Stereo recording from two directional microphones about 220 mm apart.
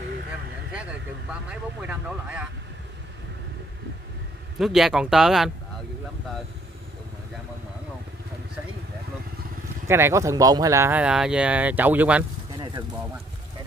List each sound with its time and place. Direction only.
1.5 s speech: 5° right (ahead or behind)
4.6 s speech: centre (ahead or behind)
9.8 s speech: 10° right (ahead or behind)